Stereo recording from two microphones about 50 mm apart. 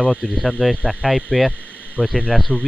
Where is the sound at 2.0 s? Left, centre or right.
Right.